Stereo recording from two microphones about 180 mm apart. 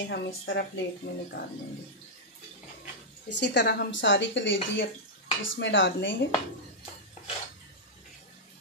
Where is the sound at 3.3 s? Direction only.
70° left (ahead or behind).